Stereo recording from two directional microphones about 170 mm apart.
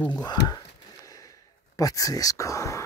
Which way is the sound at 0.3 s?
20° left (ahead or behind).